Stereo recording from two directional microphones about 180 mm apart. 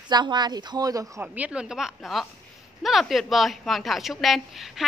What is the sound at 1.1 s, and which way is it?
A woman's voice, 10° right (ahead or behind).